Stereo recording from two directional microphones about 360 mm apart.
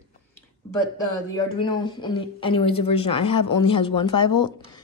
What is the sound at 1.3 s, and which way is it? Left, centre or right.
Speech, centre.